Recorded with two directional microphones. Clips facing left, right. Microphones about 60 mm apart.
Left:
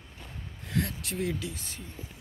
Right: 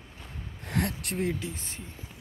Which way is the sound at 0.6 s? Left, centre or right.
Right.